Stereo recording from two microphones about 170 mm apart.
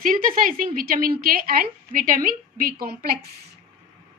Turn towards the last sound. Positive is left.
turn(degrees=-65)  # may be behind; listen again after turning